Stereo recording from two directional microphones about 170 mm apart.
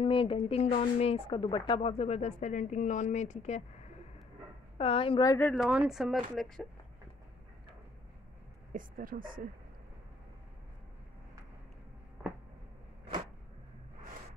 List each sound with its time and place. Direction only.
0.0 s speech: 30° left (ahead or behind)
4.7 s speech: 35° left (ahead or behind)
5.4 s speech: 5° left (ahead or behind)
5.7 s speech: 5° right (ahead or behind)
8.7 s speech: 55° right (ahead or behind)